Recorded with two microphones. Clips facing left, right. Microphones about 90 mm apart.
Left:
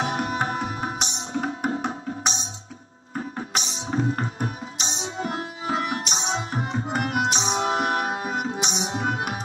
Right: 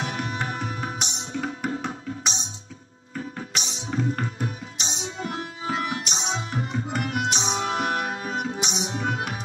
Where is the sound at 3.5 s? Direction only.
35° left (ahead or behind).